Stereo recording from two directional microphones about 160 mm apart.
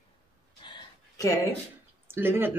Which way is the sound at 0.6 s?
25° left (ahead or behind).